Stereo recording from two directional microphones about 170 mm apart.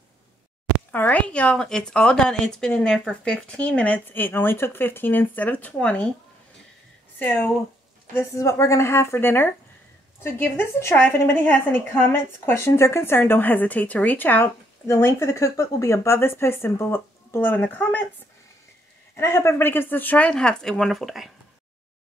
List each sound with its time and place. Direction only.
0.9 s a woman's voice: 10° left (ahead or behind)
7.2 s a woman's voice: 10° left (ahead or behind)
19.1 s a woman's voice: 15° left (ahead or behind); by 21.3 s centre (ahead or behind)